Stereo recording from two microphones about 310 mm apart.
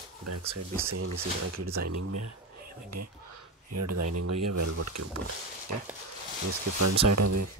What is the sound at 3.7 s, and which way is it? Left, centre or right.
Speech, right.